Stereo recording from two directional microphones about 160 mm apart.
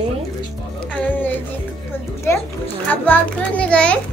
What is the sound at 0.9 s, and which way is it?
Music, 10° left (ahead or behind).